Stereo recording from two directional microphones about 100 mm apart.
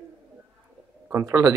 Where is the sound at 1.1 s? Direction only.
30° right (ahead or behind).